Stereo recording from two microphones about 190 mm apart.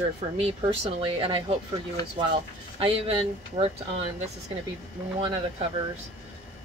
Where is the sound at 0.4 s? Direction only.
30° right (ahead or behind).